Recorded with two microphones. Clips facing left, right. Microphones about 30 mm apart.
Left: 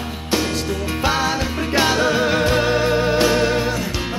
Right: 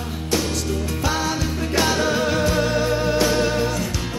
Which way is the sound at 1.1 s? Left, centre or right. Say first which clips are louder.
Left 4 dB; left.